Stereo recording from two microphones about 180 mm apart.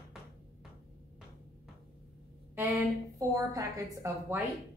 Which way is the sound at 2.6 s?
10° right (ahead or behind).